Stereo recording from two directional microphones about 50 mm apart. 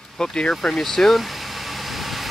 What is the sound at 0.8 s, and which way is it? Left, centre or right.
Speech, centre.